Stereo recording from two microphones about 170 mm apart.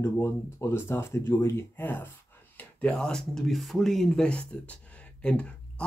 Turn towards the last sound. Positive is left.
turn(degrees=5)  # may be behind; listen again after turning